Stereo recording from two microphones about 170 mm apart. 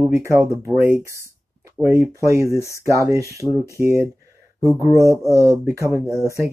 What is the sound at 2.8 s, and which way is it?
Speech, 15° right (ahead or behind).